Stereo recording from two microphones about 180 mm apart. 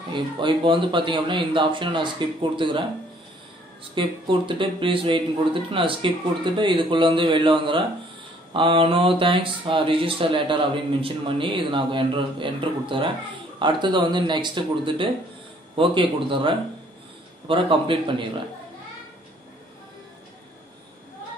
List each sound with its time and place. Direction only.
0.1 s speech: 25° right (ahead or behind)
3.9 s speech: 30° right (ahead or behind)